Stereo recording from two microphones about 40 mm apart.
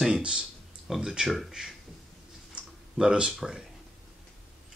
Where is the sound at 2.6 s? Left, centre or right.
Right.